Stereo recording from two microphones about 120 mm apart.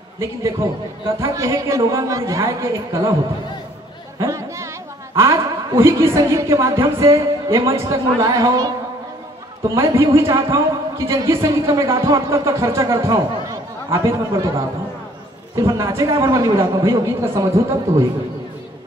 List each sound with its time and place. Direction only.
0.2 s a man's voice: 25° right (ahead or behind)
4.2 s chatter: 25° right (ahead or behind)
5.1 s a woman's voice: 25° right (ahead or behind)